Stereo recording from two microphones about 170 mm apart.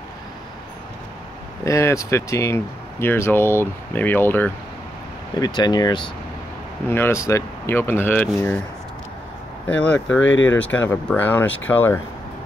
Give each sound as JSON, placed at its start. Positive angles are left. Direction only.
{"t": 1.6, "sound": "speech", "side_deg": 15}
{"t": 5.4, "sound": "speech", "side_deg": 25}
{"t": 6.9, "sound": "speech", "side_deg": 15}
{"t": 9.7, "sound": "speech", "side_deg": 5}
{"t": 10.2, "sound": "speech", "side_deg": 90}
{"t": 10.6, "sound": "speech", "side_deg": 10}